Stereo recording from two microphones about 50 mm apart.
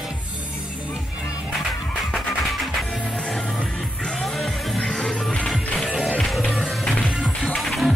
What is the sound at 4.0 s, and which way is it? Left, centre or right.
Music, left.